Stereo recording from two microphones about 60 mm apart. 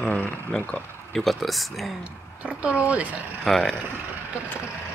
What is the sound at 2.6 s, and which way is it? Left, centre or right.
Speech, right.